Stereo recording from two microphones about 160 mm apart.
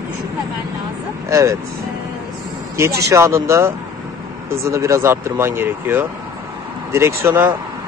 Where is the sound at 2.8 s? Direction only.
15° right (ahead or behind).